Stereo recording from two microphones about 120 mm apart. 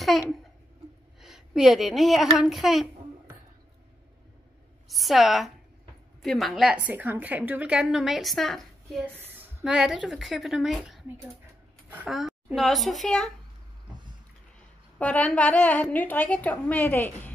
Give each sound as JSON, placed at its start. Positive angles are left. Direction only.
{"t": 0.0, "sound": "a child's voice", "side_deg": 0}
{"t": 4.8, "sound": "a woman's voice", "side_deg": 0}
{"t": 9.0, "sound": "a sound", "side_deg": -20}
{"t": 9.7, "sound": "a woman's voice", "side_deg": -5}
{"t": 12.1, "sound": "a woman's voice", "side_deg": 0}
{"t": 15.0, "sound": "a woman's voice", "side_deg": 10}